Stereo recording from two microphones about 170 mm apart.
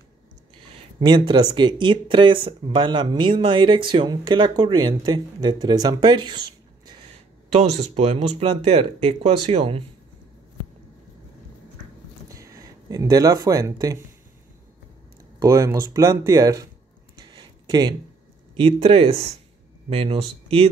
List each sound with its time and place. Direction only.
0.7 s speech: 25° right (ahead or behind)
6.9 s speech: 35° right (ahead or behind)
12.3 s speech: 20° right (ahead or behind)
15.3 s speech: 20° right (ahead or behind)
17.2 s a sound: 25° right (ahead or behind)
18.6 s speech: 35° right (ahead or behind)